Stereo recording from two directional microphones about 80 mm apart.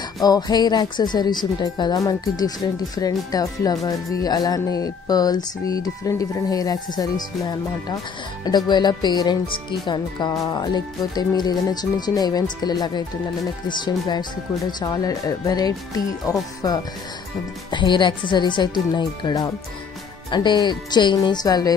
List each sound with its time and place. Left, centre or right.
0.2 s speech: left
2.0 s speech: left
8.5 s speech: left
10.3 s speech: left
17.6 s speech: left